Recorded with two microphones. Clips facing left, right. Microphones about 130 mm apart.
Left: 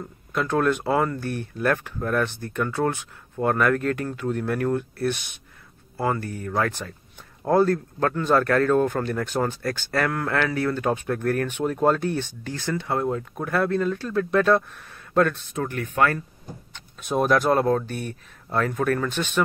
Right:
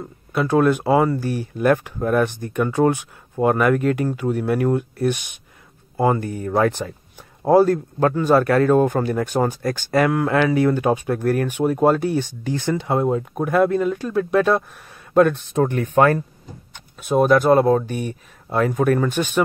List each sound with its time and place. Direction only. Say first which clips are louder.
0.3 s a man's voice: right 5 dB; 10° right (ahead or behind)
7.4 s a man's voice: right 5 dB; 10° right (ahead or behind)
15.5 s speech: right 9 dB; 30° right (ahead or behind)
16.7 s a man's voice: right 6 dB; centre (ahead or behind)